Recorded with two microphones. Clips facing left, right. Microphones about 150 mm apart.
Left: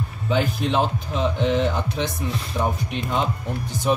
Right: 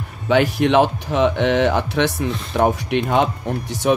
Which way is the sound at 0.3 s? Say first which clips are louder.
Right 7 dB; 80° right.